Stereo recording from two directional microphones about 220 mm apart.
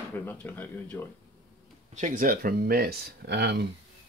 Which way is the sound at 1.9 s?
35° right (ahead or behind).